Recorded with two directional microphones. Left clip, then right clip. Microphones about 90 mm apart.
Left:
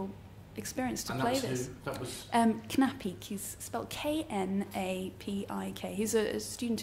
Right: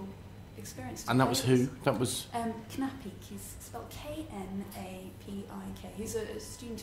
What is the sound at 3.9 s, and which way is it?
A woman's voice, 40° left (ahead or behind).